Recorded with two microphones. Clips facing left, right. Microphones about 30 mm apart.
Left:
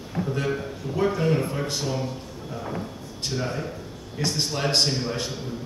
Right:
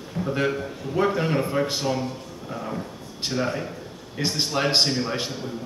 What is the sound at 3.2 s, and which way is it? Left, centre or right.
A man's voice, centre.